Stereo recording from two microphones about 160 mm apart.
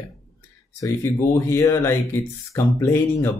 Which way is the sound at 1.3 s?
20° left (ahead or behind).